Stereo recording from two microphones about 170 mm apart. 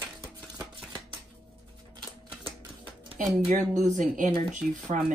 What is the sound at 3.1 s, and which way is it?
A woman's voice, 50° right (ahead or behind).